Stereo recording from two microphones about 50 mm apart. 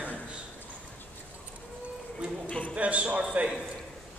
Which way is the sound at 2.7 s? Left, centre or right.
Right.